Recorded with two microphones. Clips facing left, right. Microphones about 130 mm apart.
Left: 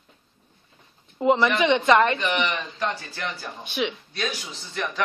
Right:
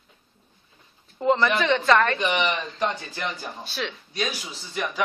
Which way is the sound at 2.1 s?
15° right (ahead or behind).